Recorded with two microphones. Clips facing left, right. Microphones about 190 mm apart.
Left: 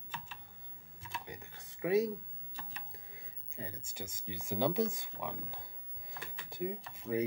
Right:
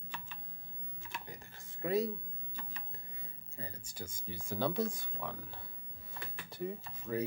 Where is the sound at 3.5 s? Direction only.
20° left (ahead or behind).